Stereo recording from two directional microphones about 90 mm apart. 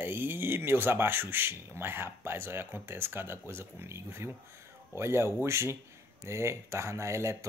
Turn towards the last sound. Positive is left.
turn(degrees=-30)  # may be behind; listen again after turning